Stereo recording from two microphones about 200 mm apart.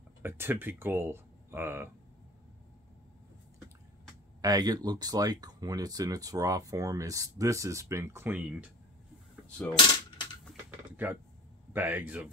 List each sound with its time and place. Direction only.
0.2 s speech: 10° right (ahead or behind)
4.4 s speech: 20° right (ahead or behind)
9.5 s speech: 5° left (ahead or behind)
9.8 s coin: 20° left (ahead or behind)
11.7 s speech: 10° right (ahead or behind)